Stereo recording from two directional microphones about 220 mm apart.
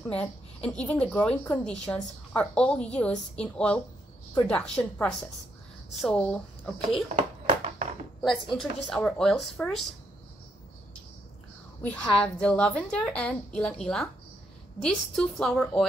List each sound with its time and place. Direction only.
0.1 s a woman's voice: 5° left (ahead or behind)
7.2 s a sound: 30° right (ahead or behind)
8.5 s a woman's voice: 5° left (ahead or behind)
11.8 s a woman's voice: 5° left (ahead or behind)